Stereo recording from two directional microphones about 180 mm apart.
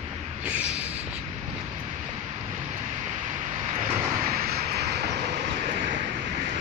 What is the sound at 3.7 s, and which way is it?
Vehicle, 50° right (ahead or behind).